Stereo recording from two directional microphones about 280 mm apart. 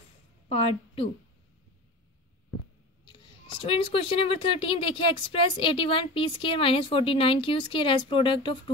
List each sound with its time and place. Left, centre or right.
0.5 s a woman's voice: left
3.1 s speech: centre